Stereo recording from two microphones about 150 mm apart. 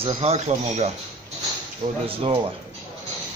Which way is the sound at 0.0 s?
40° right (ahead or behind).